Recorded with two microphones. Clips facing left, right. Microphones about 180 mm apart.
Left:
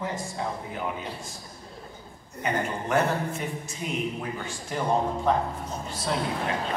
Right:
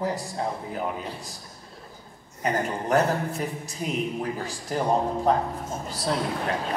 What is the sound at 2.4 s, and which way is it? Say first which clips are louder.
A man's voice: right 2 dB; 35° right (ahead or behind).